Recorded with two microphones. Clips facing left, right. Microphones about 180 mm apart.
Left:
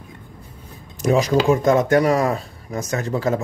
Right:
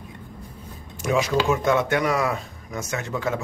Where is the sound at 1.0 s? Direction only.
40° left (ahead or behind).